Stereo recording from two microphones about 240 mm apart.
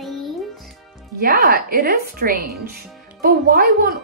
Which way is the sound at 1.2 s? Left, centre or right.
Right.